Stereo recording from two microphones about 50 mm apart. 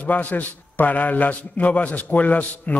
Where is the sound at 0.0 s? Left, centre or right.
Left.